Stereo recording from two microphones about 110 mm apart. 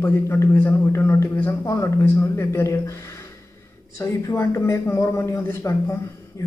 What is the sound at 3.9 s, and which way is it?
A man's voice, 25° left (ahead or behind).